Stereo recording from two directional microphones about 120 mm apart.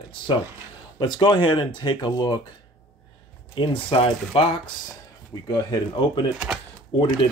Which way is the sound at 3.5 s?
45° left (ahead or behind).